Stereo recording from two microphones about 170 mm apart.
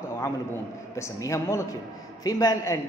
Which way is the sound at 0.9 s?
15° left (ahead or behind).